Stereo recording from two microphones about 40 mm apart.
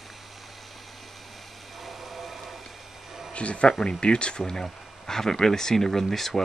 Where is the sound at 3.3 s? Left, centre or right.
Left.